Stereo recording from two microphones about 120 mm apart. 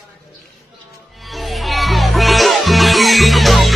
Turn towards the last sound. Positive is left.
turn(degrees=0)  # may be behind; listen again after turning